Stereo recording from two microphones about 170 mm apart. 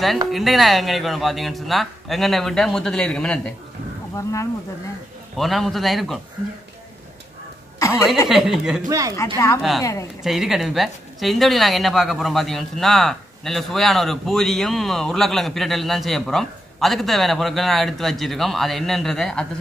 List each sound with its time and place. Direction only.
0.3 s speech: centre (ahead or behind)
4.1 s speech: 20° left (ahead or behind)
5.4 s speech: centre (ahead or behind)
8.3 s speech: centre (ahead or behind)
8.8 s speech: 20° right (ahead or behind)
9.1 s speech: 15° left (ahead or behind)
9.6 s speech: centre (ahead or behind)